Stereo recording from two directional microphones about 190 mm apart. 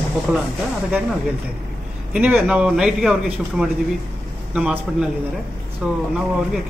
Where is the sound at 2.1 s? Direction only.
5° right (ahead or behind).